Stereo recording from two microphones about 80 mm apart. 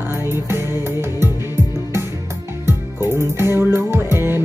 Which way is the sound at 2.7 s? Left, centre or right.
Right.